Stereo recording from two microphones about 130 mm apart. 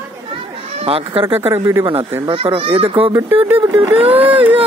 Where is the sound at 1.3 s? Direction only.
20° right (ahead or behind).